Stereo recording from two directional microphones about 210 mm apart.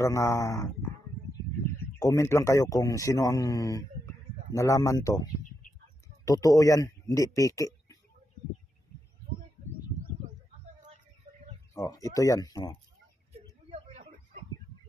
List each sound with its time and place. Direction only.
0.0 s a man's voice: 15° left (ahead or behind)
2.0 s a man's voice: 15° left (ahead or behind)
11.7 s a man's voice: 15° left (ahead or behind)
13.3 s a sound: 30° right (ahead or behind)